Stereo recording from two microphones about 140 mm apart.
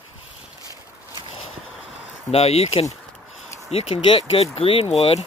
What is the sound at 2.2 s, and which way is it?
Speech, 45° left (ahead or behind).